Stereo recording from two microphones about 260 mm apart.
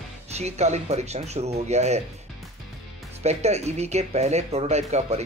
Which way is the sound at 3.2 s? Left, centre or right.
Right.